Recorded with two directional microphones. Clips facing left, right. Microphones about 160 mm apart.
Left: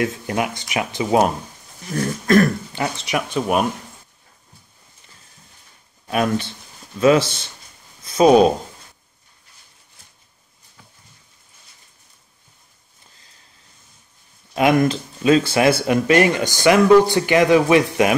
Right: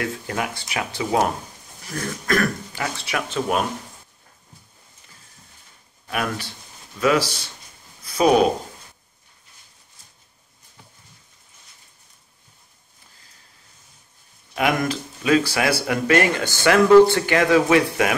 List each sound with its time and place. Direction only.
0.0 s speech: 20° left (ahead or behind)
6.0 s speech: 25° left (ahead or behind)
14.5 s speech: 25° left (ahead or behind)